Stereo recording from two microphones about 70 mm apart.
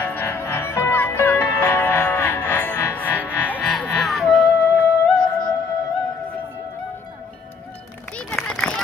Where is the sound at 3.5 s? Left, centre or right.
Centre.